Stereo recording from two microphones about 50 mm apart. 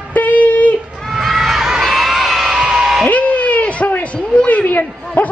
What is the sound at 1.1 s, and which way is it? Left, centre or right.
Crowd, centre.